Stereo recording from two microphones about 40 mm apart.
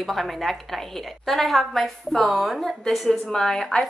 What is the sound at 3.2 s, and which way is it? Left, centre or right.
Speech, centre.